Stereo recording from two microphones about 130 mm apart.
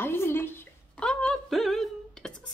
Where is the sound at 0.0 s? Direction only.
20° left (ahead or behind).